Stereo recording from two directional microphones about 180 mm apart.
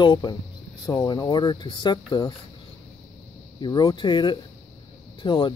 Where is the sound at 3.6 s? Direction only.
25° left (ahead or behind).